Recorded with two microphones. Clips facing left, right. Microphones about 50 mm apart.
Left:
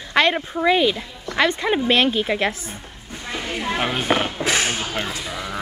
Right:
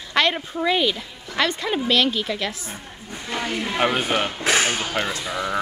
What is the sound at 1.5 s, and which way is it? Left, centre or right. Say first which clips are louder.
A woman's voice: left 3 dB; left.